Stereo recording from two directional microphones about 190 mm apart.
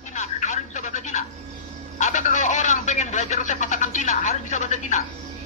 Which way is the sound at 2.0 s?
40° left (ahead or behind).